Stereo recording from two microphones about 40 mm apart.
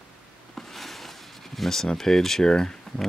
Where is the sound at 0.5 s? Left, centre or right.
Centre.